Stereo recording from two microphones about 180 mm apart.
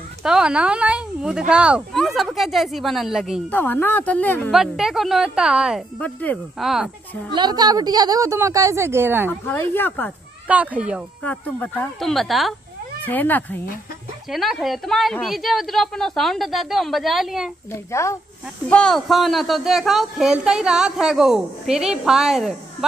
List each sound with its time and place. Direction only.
0.2 s speech: 5° right (ahead or behind)
3.5 s speech: 10° left (ahead or behind)
4.5 s a woman's voice: centre (ahead or behind)
5.9 s speech: 10° left (ahead or behind)
7.3 s speech: 25° right (ahead or behind)
9.5 s speech: 10° left (ahead or behind)
10.5 s speech: 5° right (ahead or behind)
11.2 s a woman's voice: 10° left (ahead or behind)
14.3 s a woman's voice: centre (ahead or behind)
18.7 s a woman's voice: 5° left (ahead or behind)